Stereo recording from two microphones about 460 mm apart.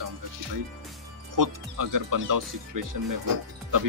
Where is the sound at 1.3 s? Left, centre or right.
Right.